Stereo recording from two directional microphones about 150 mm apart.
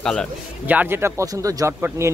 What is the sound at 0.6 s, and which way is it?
Speech, 10° right (ahead or behind).